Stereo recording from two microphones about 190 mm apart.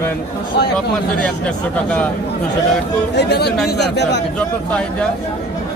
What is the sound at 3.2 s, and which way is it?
Speech, 60° left (ahead or behind).